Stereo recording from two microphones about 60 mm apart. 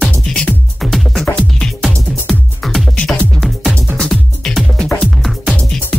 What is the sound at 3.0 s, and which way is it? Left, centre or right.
Music, centre.